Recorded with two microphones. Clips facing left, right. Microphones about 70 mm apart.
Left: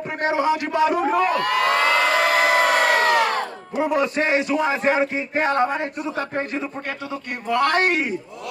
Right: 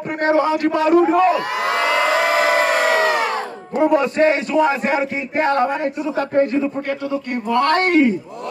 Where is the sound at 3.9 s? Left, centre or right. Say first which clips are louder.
Right 3 dB; centre.